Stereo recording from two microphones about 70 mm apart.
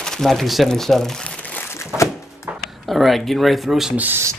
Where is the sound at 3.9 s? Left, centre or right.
Right.